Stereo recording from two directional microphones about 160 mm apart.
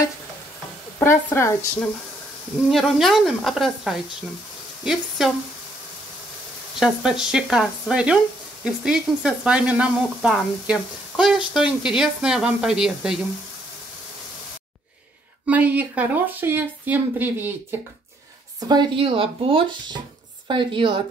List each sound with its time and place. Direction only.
0.9 s speech: 15° left (ahead or behind)
2.7 s speech: centre (ahead or behind)
6.8 s speech: 5° right (ahead or behind)
15.4 s speech: 10° right (ahead or behind)
18.6 s speech: 25° right (ahead or behind)